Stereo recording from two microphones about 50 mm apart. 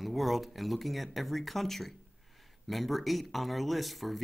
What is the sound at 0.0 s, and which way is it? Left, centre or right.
Speech, centre.